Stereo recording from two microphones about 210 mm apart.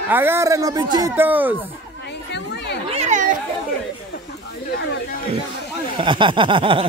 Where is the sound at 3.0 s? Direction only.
35° right (ahead or behind).